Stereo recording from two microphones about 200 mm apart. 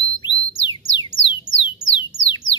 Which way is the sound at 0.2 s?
20° left (ahead or behind).